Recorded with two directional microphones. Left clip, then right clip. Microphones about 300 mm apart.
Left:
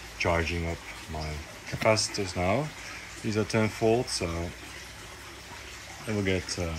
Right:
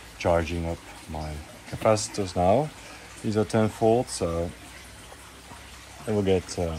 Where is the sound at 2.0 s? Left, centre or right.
Right.